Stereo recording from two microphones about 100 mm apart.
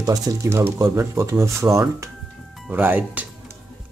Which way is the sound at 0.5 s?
25° right (ahead or behind).